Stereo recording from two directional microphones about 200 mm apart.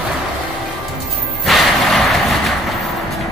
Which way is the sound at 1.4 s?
Centre (ahead or behind).